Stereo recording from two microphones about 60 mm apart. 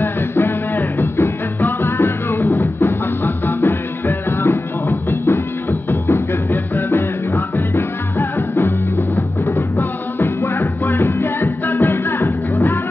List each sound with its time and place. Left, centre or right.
0.0 s music: left
8.4 s music: left
9.6 s music: left